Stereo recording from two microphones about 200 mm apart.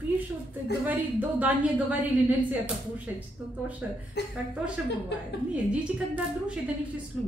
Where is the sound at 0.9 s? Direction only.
10° right (ahead or behind).